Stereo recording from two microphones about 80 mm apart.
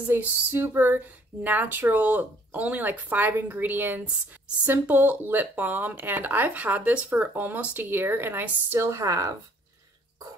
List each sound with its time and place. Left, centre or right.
0.0 s speech: right